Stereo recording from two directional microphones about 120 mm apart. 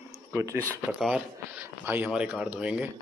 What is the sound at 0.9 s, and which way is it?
Speech, 5° right (ahead or behind).